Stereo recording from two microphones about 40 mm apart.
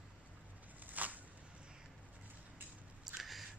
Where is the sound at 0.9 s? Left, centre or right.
Right.